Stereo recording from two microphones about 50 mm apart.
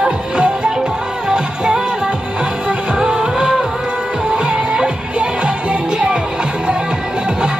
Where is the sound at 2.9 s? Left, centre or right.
Centre.